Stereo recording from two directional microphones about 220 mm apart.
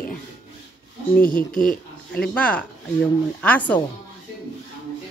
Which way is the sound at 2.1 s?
5° left (ahead or behind).